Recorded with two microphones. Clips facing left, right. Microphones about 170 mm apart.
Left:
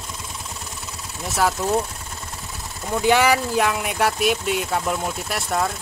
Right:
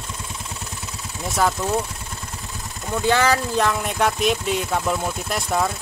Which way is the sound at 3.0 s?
15° left (ahead or behind).